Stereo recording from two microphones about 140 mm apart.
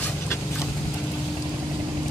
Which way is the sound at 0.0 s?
20° left (ahead or behind).